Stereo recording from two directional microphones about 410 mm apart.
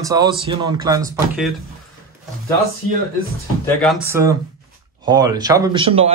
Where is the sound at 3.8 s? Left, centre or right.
Centre.